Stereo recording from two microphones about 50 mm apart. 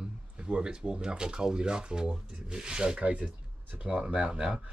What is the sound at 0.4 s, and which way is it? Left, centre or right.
Speech, centre.